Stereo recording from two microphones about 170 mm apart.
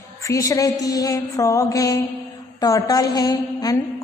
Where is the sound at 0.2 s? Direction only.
20° left (ahead or behind).